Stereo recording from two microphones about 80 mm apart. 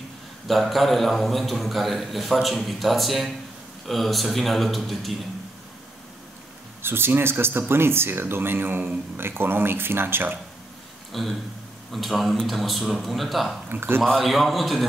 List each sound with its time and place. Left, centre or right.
0.5 s a man's voice: centre
6.8 s speech: right
11.1 s a man's voice: centre
13.7 s speech: right
14.0 s a man's voice: centre